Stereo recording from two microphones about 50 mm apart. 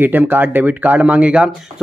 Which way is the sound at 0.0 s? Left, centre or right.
Right.